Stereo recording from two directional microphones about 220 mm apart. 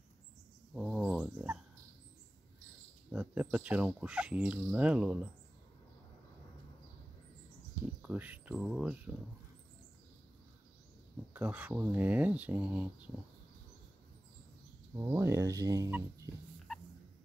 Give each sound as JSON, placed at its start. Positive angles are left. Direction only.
{"t": 0.7, "sound": "a sound", "side_deg": 0}
{"t": 3.1, "sound": "speech", "side_deg": -5}
{"t": 8.0, "sound": "speech", "side_deg": -5}
{"t": 11.3, "sound": "speech", "side_deg": -5}
{"t": 15.0, "sound": "speech", "side_deg": -10}